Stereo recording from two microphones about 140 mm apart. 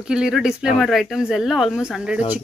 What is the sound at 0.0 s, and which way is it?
Speech, 5° right (ahead or behind).